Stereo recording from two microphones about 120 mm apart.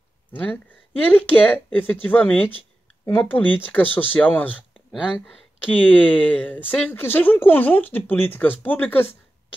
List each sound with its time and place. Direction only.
0.3 s speech: 10° left (ahead or behind)
5.8 s speech: 10° left (ahead or behind)